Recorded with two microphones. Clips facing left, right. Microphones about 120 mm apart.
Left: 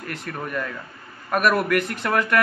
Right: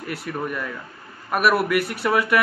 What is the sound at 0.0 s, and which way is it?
A man's voice, 10° right (ahead or behind).